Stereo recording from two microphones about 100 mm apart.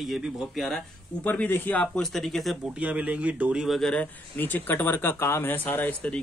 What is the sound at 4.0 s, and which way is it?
Speech, 20° left (ahead or behind).